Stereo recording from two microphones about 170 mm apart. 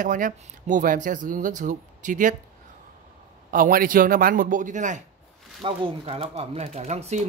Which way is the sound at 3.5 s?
55° right (ahead or behind).